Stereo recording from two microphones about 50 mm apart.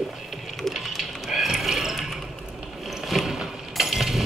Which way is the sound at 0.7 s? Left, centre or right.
Centre.